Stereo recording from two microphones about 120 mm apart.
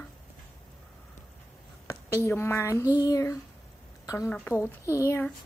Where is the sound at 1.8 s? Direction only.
20° left (ahead or behind).